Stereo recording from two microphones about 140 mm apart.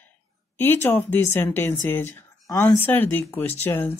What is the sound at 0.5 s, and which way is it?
A woman's voice, 15° left (ahead or behind).